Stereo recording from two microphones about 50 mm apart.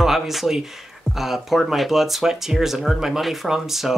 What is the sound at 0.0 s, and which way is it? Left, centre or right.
Speech, centre.